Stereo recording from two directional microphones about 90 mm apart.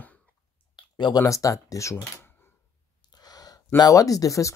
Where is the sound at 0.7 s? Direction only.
60° left (ahead or behind).